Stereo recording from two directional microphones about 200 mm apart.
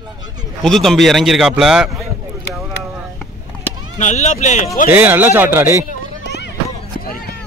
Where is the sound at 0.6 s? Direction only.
Centre (ahead or behind).